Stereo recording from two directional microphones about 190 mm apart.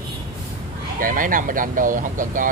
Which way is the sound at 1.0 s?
45° right (ahead or behind).